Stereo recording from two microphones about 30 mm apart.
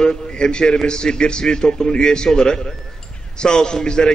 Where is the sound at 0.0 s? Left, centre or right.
Left.